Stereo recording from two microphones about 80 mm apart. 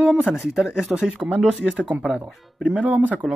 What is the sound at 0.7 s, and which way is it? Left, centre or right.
Speech, centre.